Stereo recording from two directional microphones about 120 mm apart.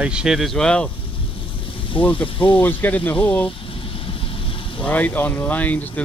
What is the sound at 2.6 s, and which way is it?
Speech, 15° left (ahead or behind).